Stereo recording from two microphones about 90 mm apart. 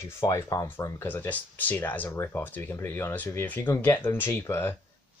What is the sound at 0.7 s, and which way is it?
Speech, 25° left (ahead or behind).